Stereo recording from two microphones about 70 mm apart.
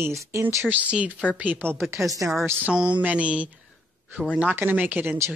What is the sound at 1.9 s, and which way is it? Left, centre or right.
Speech, right.